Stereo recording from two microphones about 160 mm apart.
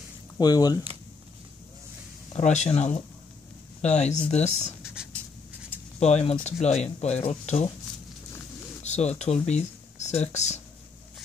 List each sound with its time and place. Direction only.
0.4 s speech: 25° left (ahead or behind)
2.3 s speech: 45° left (ahead or behind)
5.1 s writing: 10° left (ahead or behind)
5.9 s speech: 40° left (ahead or behind)
8.8 s speech: 45° left (ahead or behind)